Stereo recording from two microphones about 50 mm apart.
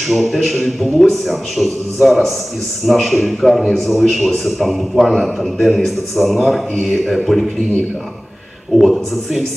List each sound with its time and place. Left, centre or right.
0.0 s a man's voice: centre
8.7 s a man's voice: centre